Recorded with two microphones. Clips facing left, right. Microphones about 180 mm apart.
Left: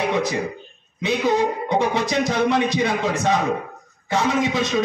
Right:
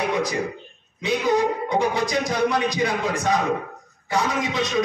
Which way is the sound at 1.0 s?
25° left (ahead or behind).